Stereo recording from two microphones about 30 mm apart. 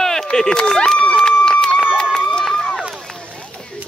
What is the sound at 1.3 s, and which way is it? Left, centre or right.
Run, left.